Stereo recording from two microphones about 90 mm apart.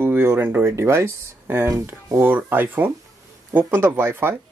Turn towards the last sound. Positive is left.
turn(degrees=-25)  # may be behind; listen again after turning